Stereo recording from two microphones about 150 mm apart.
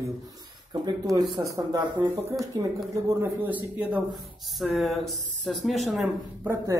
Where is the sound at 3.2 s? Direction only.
10° right (ahead or behind).